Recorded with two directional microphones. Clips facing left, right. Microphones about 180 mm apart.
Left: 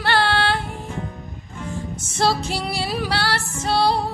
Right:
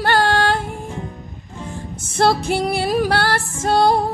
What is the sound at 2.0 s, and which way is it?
Music, 55° right (ahead or behind).